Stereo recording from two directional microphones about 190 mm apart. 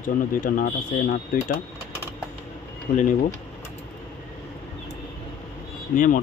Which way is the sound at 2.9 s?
55° left (ahead or behind).